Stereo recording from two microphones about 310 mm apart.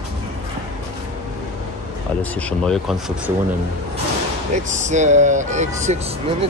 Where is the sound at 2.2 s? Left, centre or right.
Centre.